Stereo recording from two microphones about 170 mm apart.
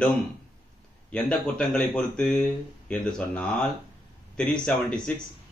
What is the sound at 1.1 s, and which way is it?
Speech, 5° left (ahead or behind).